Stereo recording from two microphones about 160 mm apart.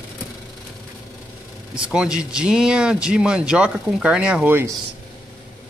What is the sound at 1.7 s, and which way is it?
Speech, 5° right (ahead or behind).